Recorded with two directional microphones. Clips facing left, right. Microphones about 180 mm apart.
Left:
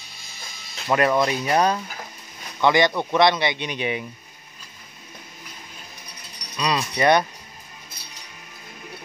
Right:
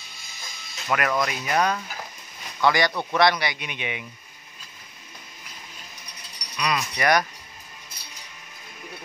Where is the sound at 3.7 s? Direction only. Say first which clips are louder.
Left 7 dB; 35° left (ahead or behind).